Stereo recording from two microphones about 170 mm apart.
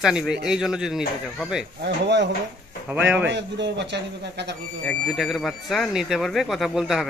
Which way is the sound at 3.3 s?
90° right.